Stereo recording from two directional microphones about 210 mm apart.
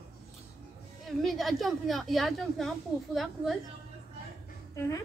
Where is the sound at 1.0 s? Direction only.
Centre (ahead or behind).